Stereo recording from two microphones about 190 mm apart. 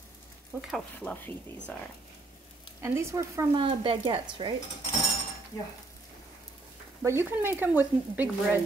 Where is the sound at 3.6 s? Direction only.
25° right (ahead or behind).